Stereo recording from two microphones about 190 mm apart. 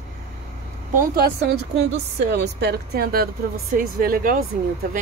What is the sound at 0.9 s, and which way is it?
A woman's voice, 55° right (ahead or behind).